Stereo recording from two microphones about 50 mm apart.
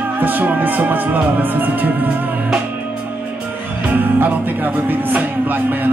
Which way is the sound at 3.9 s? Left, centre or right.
Right.